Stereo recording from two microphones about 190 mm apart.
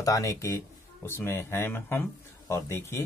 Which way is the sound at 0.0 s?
20° left (ahead or behind).